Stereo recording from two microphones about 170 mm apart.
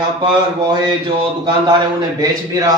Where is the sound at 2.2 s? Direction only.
20° right (ahead or behind).